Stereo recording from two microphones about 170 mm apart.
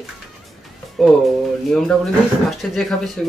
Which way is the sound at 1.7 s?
Centre (ahead or behind).